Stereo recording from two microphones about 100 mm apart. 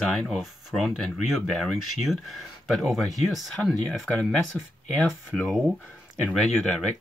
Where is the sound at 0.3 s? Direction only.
Centre (ahead or behind).